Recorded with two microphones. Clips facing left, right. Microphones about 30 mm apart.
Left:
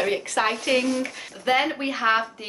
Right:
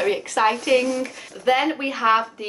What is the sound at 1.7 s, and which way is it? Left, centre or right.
Speech, centre.